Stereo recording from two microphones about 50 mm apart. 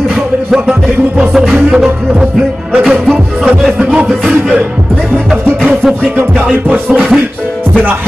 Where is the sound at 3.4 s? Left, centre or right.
Centre.